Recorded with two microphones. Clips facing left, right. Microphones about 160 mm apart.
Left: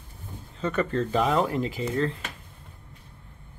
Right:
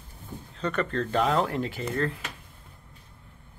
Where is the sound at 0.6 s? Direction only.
5° left (ahead or behind).